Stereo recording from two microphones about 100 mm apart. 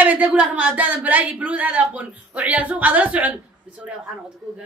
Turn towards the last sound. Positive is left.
turn(degrees=-15)  # may be behind; listen again after turning